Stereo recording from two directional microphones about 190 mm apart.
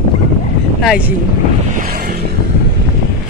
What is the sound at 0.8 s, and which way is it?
Speech, 5° right (ahead or behind).